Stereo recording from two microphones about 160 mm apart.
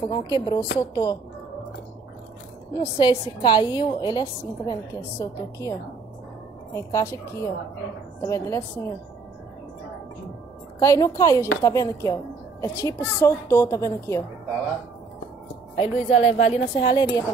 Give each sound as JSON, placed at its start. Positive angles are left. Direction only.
{"t": 0.1, "sound": "a woman's voice", "side_deg": 25}
{"t": 2.7, "sound": "a woman's voice", "side_deg": 20}
{"t": 5.2, "sound": "a woman's voice", "side_deg": 20}
{"t": 10.8, "sound": "a woman's voice", "side_deg": 20}
{"t": 15.7, "sound": "speech", "side_deg": 40}